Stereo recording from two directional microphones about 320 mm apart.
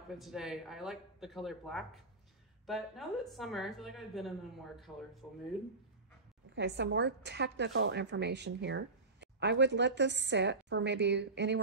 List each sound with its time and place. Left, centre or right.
0.1 s speech: centre
6.5 s a woman's voice: right